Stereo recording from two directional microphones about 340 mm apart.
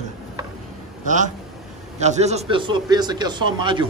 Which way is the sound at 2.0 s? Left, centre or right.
Centre.